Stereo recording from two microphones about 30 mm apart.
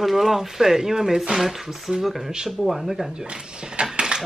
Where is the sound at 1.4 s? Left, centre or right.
Centre.